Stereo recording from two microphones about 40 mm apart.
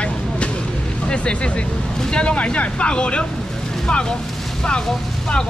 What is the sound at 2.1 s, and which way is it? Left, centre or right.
Speech, left.